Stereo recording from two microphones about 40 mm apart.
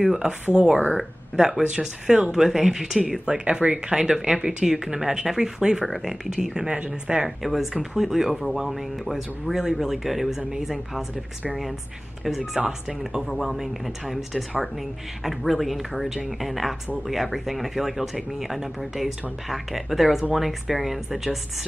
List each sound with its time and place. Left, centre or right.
0.0 s speech: centre
0.5 s speech: right
1.3 s speech: centre
2.3 s speech: centre
4.6 s speech: centre
5.6 s speech: centre
5.9 s speech: centre
7.2 s speech: centre
12.6 s speech: centre